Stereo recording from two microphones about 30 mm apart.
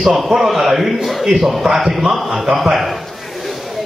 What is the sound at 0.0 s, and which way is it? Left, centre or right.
Speech, centre.